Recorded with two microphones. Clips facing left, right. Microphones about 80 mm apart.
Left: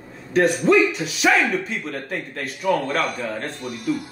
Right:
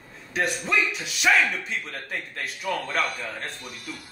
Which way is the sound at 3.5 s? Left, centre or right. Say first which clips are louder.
Left 13 dB; centre.